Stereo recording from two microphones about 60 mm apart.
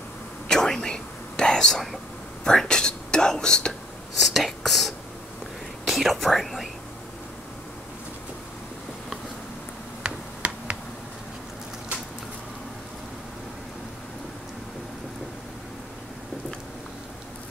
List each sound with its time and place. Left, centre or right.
0.5 s whispering: centre
4.2 s speech: centre
10.0 s finger snapping: right